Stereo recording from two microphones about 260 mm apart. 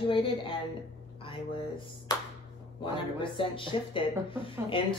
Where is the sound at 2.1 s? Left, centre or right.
Centre.